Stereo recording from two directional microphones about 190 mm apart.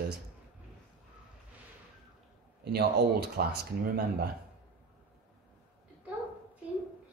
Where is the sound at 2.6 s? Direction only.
55° right (ahead or behind).